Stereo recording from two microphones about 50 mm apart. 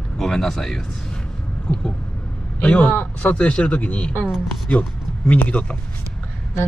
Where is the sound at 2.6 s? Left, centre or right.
Left.